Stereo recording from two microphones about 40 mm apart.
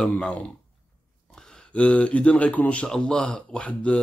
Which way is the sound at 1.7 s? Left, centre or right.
Left.